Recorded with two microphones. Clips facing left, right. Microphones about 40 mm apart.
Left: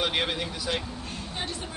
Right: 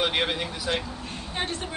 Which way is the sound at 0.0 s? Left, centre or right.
Centre.